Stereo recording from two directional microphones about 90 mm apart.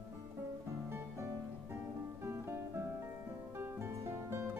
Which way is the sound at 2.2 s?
25° right (ahead or behind).